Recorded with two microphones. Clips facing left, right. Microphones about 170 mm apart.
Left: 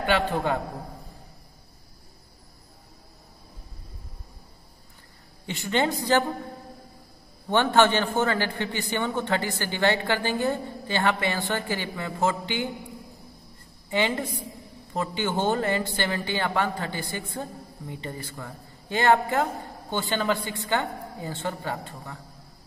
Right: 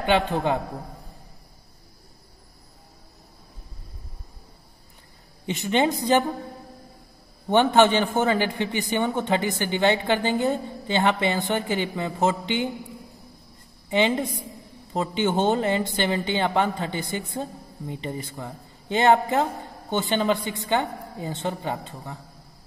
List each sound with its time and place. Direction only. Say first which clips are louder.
0.0 s speech: right 2 dB; 20° right (ahead or behind)
5.5 s speech: right 3 dB; 20° right (ahead or behind)
7.4 s a man's voice: right 3 dB; 15° right (ahead or behind)
13.8 s speech: right 4 dB; 20° right (ahead or behind)